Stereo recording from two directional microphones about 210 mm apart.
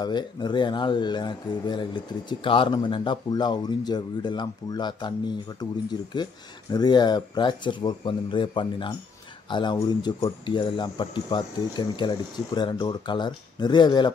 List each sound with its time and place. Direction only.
0.0 s speech: 20° left (ahead or behind)